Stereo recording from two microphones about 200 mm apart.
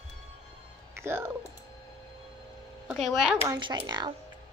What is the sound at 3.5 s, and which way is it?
Speech, 20° right (ahead or behind).